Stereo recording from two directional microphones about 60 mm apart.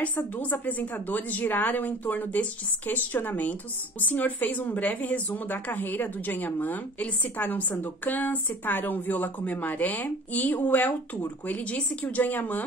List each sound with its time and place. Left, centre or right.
0.0 s a woman's voice: left